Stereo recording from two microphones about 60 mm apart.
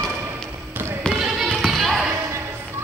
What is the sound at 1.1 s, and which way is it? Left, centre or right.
Basketball bounce, centre.